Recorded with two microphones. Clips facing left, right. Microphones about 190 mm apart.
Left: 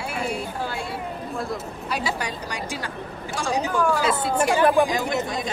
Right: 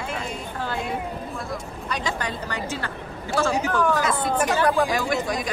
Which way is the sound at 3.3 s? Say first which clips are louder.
Right 2 dB; 15° left (ahead or behind).